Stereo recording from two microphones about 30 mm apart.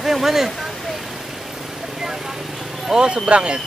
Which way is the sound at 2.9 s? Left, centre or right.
Right.